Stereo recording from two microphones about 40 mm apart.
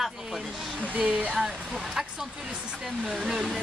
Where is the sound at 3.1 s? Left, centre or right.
Centre.